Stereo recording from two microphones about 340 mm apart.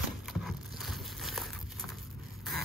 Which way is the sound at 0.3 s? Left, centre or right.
Centre.